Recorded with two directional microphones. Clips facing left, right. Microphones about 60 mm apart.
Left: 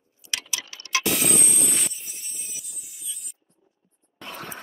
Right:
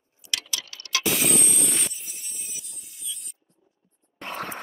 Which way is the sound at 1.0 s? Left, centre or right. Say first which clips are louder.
Right 2 dB; centre.